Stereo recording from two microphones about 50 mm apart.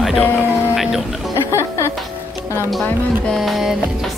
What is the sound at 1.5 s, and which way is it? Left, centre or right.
Music, left.